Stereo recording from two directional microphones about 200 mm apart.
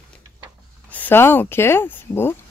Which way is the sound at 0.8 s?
10° left (ahead or behind).